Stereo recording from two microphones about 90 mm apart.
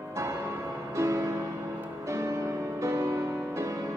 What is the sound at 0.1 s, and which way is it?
Music, 35° right (ahead or behind).